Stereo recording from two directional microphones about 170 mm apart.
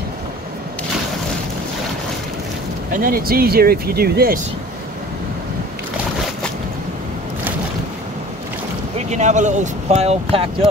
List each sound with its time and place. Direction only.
2.9 s speech: 60° right (ahead or behind)
9.1 s speech: 45° right (ahead or behind)